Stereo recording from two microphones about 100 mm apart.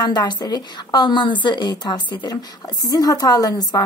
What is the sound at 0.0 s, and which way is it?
A woman's voice, 45° left (ahead or behind).